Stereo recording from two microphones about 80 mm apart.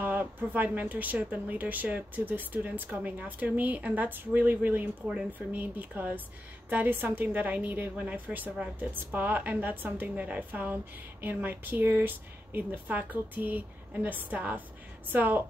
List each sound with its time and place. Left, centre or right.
0.0 s a woman's voice: right